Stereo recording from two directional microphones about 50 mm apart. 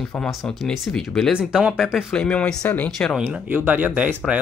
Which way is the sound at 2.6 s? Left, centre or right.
Left.